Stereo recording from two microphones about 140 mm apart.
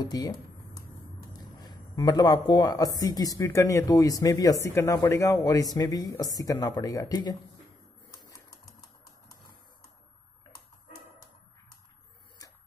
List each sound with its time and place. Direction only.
0.0 s speech: 30° left (ahead or behind)